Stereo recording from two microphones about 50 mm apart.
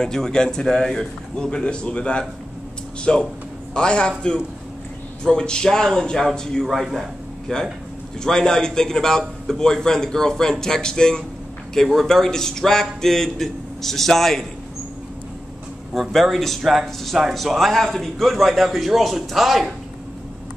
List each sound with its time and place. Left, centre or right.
0.0 s a man's voice: centre
5.2 s a man's voice: centre
7.5 s a man's voice: centre
15.9 s speech: centre